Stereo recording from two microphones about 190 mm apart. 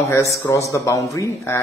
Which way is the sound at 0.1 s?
15° left (ahead or behind).